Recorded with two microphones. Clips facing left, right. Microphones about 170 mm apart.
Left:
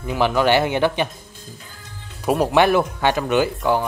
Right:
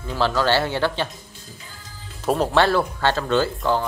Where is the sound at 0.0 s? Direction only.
15° left (ahead or behind).